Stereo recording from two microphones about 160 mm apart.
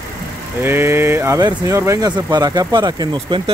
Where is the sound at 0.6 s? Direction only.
15° right (ahead or behind).